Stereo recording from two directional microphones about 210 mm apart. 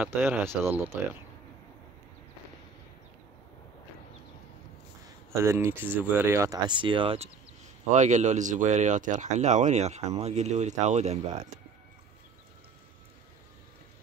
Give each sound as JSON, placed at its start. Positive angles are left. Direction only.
{"t": 0.0, "sound": "speech", "side_deg": -10}
{"t": 5.3, "sound": "speech", "side_deg": -15}